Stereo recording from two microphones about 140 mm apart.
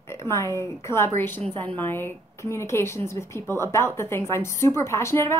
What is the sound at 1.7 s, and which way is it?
A woman's voice, 15° left (ahead or behind).